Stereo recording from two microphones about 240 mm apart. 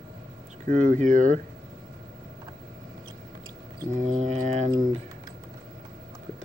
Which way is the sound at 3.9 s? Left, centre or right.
Right.